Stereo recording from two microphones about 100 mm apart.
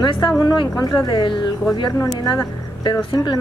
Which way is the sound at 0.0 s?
50° left (ahead or behind).